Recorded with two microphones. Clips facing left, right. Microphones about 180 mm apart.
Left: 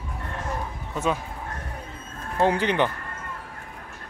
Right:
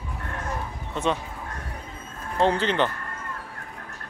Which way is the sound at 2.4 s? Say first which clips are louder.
Left 1 dB; 15° left (ahead or behind).